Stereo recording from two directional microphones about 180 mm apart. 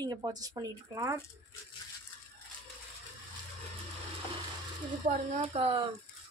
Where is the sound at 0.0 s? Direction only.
20° right (ahead or behind).